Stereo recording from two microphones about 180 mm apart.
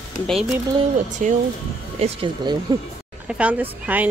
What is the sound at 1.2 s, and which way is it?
Speech, 45° right (ahead or behind).